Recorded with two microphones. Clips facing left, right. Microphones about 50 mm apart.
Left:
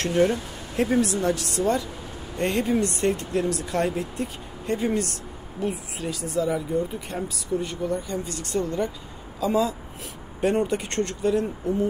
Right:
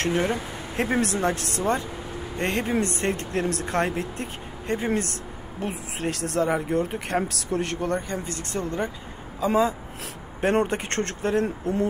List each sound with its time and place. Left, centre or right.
0.0 s speech: right
5.6 s speech: right
6.1 s speech: right
6.7 s speech: right
8.1 s speech: right
10.5 s speech: right